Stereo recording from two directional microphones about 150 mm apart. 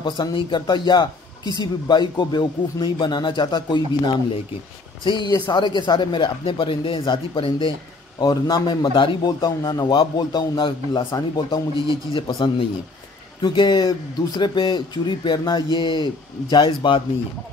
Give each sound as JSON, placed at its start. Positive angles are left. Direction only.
{"t": 0.0, "sound": "a man's voice", "side_deg": 35}
{"t": 5.0, "sound": "speech", "side_deg": 30}